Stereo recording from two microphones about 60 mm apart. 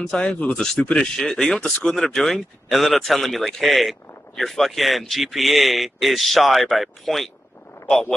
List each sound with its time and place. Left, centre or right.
0.1 s speech: centre
1.7 s speech: left
2.0 s a man's voice: centre